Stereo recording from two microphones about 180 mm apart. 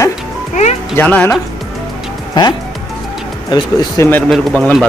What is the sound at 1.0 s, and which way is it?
Speech, 10° left (ahead or behind).